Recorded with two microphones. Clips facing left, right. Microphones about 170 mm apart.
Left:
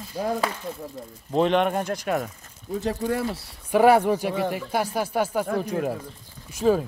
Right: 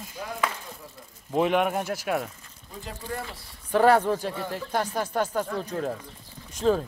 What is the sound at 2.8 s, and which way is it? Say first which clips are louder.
Speech: left 9 dB; 80° left.